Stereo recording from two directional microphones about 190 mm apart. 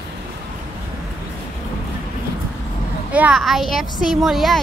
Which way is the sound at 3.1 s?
5° right (ahead or behind).